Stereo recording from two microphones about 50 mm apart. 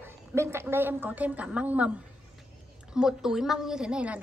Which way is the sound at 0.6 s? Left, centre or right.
Right.